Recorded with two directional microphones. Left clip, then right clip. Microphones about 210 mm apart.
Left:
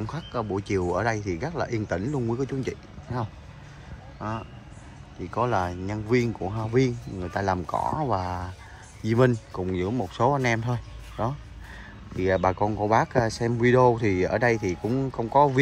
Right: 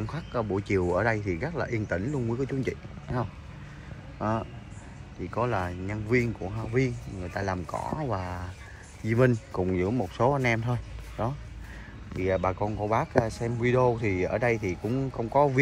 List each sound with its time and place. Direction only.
0.0 s speech: 15° left (ahead or behind)
5.2 s speech: 15° left (ahead or behind)